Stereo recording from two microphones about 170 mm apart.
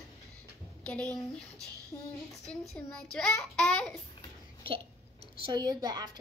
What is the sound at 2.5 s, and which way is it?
Child singing, 5° left (ahead or behind).